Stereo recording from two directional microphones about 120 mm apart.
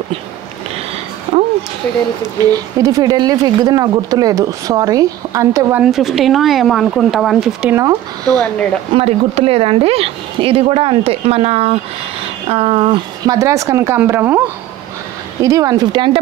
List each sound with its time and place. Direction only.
2.5 s speech: 30° right (ahead or behind)
5.9 s speech: centre (ahead or behind)
7.7 s speech: 30° right (ahead or behind)
8.9 s speech: 55° right (ahead or behind)
13.3 s speech: 25° right (ahead or behind)
15.4 s speech: 30° right (ahead or behind)